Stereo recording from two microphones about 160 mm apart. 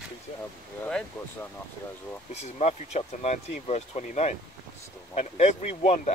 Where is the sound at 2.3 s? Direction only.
40° left (ahead or behind).